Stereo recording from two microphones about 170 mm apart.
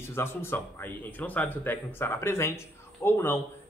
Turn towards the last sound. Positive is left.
turn(degrees=15)  # may be behind; listen again after turning